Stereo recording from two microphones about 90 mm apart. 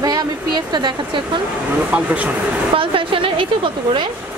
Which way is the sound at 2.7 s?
85° right.